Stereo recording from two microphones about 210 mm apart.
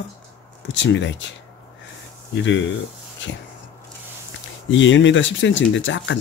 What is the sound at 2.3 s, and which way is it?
Speech, 60° left (ahead or behind).